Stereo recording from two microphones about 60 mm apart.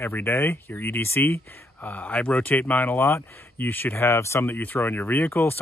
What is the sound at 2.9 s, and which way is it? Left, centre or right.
Speech, left.